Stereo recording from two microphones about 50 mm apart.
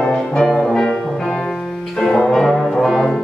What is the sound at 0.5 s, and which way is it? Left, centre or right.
Music, centre.